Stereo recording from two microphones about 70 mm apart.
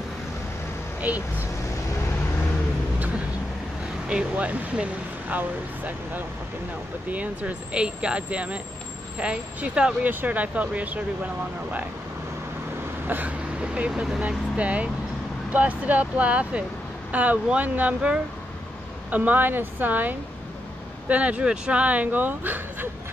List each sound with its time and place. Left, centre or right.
1.1 s speech: right
4.1 s speech: centre
13.0 s vehicle: right
13.6 s speech: centre